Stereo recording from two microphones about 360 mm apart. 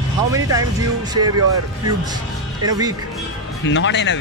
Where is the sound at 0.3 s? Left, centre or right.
Centre.